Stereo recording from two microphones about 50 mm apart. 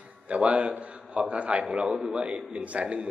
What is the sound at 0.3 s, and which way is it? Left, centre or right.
A man's voice, right.